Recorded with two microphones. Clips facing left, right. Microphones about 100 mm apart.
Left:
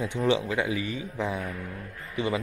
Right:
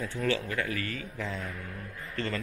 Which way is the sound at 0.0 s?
20° left (ahead or behind).